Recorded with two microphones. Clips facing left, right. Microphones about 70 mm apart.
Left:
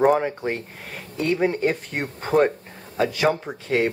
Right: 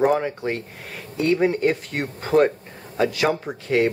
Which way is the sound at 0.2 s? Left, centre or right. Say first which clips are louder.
Even; centre.